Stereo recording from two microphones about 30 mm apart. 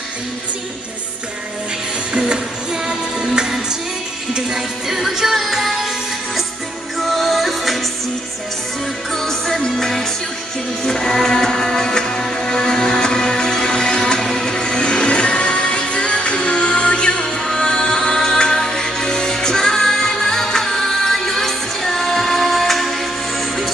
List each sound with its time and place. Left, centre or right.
2.1 s music: right
4.6 s music: centre
7.0 s music: centre
9.1 s music: centre; by 18.1 s left
18.1 s music: centre